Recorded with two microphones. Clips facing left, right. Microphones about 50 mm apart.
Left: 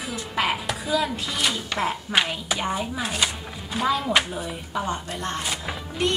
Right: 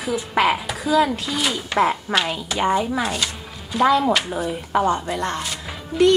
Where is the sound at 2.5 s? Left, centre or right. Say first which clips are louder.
Right 9 dB; right.